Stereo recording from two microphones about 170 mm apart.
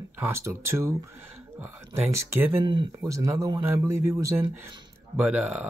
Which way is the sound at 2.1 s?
15° right (ahead or behind).